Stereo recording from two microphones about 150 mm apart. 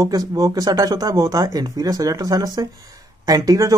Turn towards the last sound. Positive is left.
turn(degrees=-25)  # may be behind; listen again after turning